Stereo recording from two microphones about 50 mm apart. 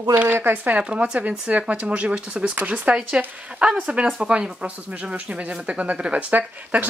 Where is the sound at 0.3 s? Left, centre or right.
Right.